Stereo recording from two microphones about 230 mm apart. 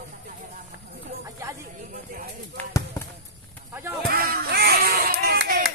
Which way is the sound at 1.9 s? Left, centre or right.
Right.